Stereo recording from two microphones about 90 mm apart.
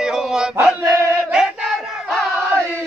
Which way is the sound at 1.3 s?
Centre (ahead or behind).